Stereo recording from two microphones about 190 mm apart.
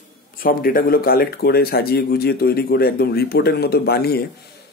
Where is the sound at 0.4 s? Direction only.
50° left (ahead or behind).